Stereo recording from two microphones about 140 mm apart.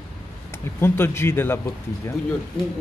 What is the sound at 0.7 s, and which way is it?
Speech, 15° left (ahead or behind).